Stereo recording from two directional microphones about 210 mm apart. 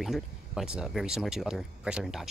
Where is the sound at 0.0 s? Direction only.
Centre (ahead or behind).